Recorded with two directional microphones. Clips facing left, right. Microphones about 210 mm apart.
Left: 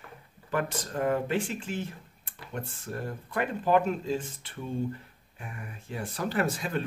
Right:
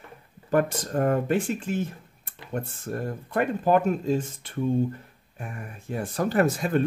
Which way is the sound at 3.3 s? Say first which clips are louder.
Right 4 dB; 45° right (ahead or behind).